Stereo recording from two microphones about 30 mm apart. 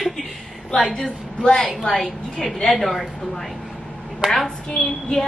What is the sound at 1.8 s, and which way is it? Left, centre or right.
A woman's voice, centre.